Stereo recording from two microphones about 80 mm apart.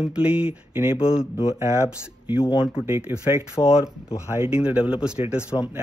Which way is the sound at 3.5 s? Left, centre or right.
Centre.